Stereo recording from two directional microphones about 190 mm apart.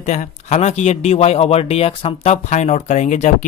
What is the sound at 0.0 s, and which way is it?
A man's voice, 35° left (ahead or behind).